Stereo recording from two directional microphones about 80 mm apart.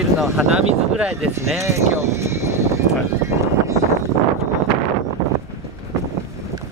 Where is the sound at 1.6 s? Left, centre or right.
Right.